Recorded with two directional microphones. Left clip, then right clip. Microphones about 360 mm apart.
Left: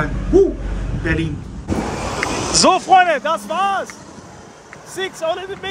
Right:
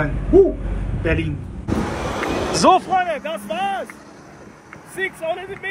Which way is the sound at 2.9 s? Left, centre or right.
Left.